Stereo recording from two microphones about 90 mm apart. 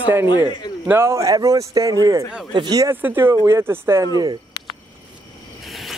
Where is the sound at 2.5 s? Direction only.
55° right (ahead or behind).